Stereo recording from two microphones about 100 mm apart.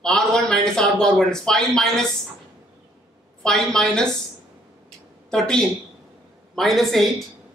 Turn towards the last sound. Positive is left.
turn(degrees=0)  # may be behind; listen again after turning